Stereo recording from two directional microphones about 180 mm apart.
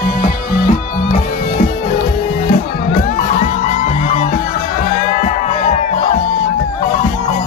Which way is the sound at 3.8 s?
40° left (ahead or behind).